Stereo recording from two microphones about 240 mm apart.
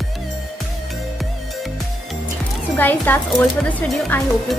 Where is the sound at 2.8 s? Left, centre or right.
Centre.